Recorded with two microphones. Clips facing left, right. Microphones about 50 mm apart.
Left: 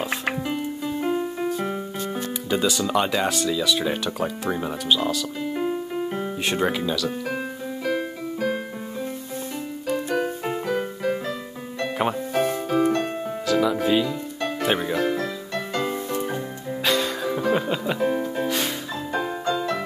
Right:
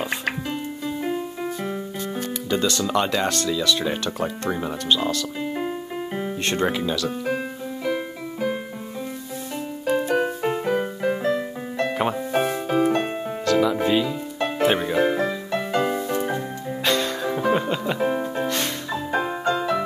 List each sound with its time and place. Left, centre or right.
0.0 s music: centre
2.5 s speech: centre
5.4 s music: centre
10.1 s music: centre
13.5 s music: centre
15.0 s music: right
16.8 s music: centre
18.0 s music: centre